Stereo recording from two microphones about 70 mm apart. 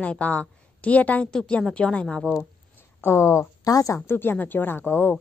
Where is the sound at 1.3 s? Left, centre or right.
Centre.